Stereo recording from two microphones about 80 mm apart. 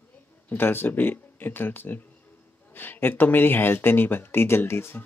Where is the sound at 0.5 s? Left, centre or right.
Left.